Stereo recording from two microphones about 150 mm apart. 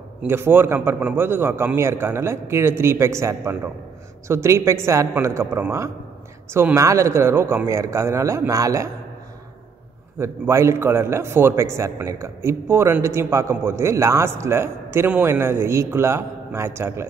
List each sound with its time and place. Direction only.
0.2 s a man's voice: 15° right (ahead or behind)
10.1 s a man's voice: 15° right (ahead or behind)